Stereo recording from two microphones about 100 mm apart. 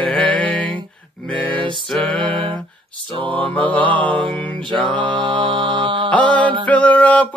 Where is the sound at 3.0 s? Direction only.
60° right (ahead or behind).